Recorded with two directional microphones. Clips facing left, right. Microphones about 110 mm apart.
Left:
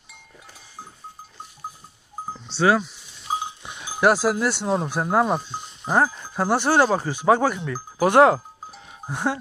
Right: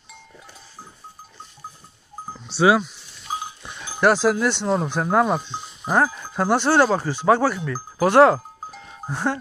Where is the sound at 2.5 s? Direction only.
10° right (ahead or behind).